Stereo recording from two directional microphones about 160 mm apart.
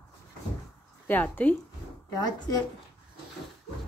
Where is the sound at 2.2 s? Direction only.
25° left (ahead or behind).